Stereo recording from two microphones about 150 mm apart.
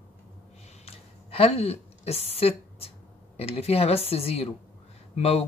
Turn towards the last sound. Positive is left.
turn(degrees=45)  # may be behind; listen again after turning